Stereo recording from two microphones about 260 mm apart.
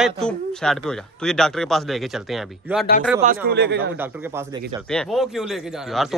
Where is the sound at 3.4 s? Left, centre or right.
Right.